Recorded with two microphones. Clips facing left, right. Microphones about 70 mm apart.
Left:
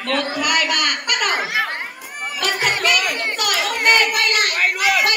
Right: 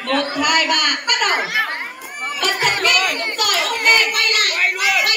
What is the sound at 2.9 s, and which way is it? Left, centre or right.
Children playing, centre.